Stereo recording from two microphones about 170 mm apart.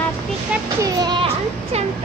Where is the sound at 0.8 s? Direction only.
25° right (ahead or behind).